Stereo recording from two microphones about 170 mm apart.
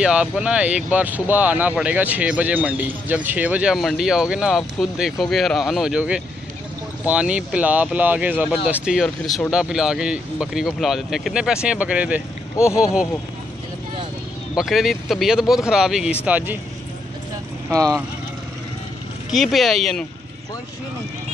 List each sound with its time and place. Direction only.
0.0 s speech: 5° right (ahead or behind)
12.5 s speech: 15° left (ahead or behind)
14.6 s speech: centre (ahead or behind)
17.6 s speech: 20° right (ahead or behind)
19.3 s speech: centre (ahead or behind)